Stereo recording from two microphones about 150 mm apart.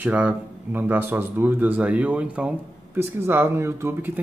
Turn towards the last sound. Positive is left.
turn(degrees=-15)  # may be behind; listen again after turning